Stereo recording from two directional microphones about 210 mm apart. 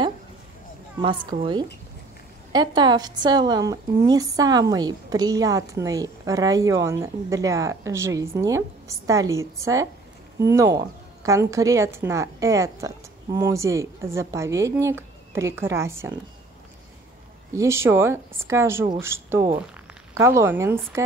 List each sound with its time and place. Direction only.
2.5 s a woman's voice: 20° right (ahead or behind)
17.6 s a woman's voice: 10° right (ahead or behind)